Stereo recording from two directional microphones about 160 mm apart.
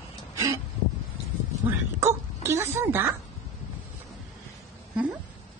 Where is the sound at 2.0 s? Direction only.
15° right (ahead or behind).